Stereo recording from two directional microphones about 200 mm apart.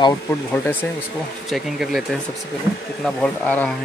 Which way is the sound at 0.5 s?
10° left (ahead or behind).